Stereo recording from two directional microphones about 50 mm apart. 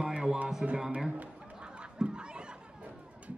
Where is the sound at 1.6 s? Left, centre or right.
Centre.